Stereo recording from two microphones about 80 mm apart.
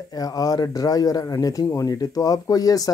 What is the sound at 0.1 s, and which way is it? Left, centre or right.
Speech, left.